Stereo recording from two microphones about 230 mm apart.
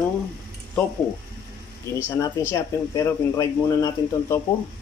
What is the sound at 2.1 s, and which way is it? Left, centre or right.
Speech, centre.